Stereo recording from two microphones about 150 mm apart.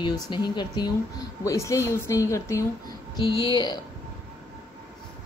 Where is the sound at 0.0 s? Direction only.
30° left (ahead or behind).